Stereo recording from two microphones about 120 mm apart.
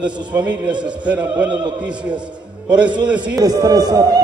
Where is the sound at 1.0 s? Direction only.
10° right (ahead or behind).